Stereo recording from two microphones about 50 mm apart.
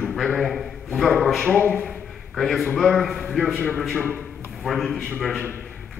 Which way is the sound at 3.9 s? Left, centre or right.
Left.